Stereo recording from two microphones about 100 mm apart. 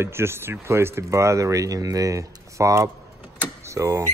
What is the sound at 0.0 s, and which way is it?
Speech, 25° right (ahead or behind).